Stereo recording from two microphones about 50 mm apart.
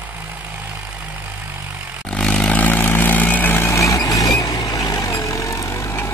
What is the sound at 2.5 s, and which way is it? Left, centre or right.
Vehicle, left.